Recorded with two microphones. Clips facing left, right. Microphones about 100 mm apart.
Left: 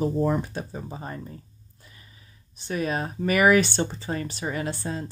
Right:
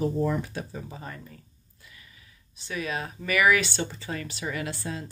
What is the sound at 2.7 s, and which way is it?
Speech, 45° left (ahead or behind).